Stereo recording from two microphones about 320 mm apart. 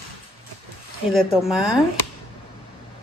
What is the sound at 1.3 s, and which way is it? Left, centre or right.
Speech, centre.